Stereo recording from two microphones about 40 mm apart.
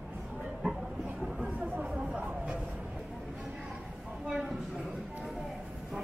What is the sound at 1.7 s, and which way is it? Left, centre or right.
Chatter, right.